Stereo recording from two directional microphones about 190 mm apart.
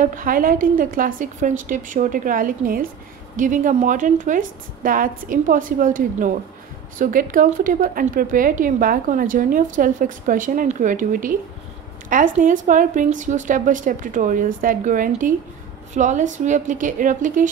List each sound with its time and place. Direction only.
0.0 s speech: 45° right (ahead or behind)
12.4 s a woman's voice: 45° right (ahead or behind)